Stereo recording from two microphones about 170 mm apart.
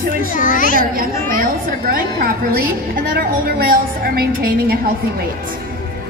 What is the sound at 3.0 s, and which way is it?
A woman's voice, 60° right (ahead or behind).